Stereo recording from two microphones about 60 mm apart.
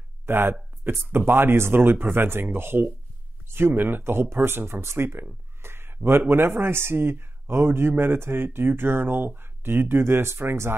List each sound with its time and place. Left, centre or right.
0.3 s speech: right